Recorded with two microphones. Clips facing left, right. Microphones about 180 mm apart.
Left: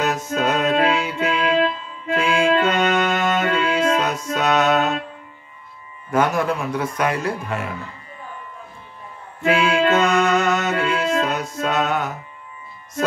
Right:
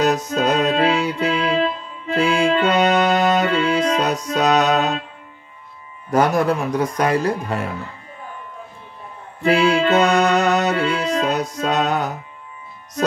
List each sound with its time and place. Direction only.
0.0 s music: 35° right (ahead or behind)
6.0 s speech: 35° right (ahead or behind)
9.4 s music: 35° right (ahead or behind)